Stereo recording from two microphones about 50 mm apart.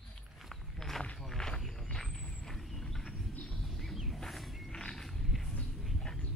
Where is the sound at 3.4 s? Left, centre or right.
Centre.